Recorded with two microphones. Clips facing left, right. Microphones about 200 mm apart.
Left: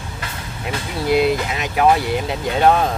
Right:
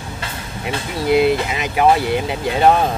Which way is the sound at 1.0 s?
Centre (ahead or behind).